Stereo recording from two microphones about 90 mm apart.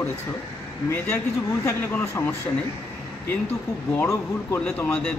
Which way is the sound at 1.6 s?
30° left (ahead or behind).